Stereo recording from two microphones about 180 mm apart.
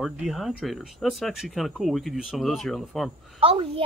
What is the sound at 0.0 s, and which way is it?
Speech, centre (ahead or behind).